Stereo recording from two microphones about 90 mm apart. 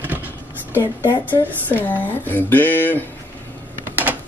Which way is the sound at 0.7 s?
25° left (ahead or behind).